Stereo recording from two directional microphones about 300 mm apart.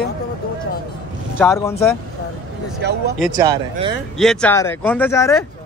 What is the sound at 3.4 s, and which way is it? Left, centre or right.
Speech, centre.